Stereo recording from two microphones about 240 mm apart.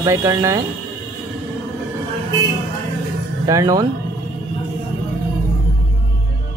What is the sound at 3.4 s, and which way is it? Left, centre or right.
Speech, centre.